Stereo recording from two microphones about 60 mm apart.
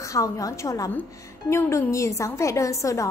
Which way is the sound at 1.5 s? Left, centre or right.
Left.